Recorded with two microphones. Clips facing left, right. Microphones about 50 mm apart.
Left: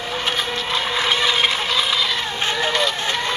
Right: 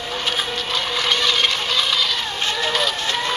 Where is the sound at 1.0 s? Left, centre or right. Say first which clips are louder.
Left 1 dB; centre.